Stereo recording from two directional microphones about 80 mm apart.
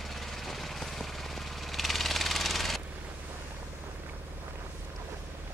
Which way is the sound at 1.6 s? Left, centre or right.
Centre.